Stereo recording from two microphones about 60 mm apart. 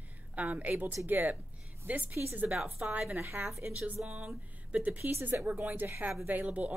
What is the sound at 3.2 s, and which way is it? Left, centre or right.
Speech, right.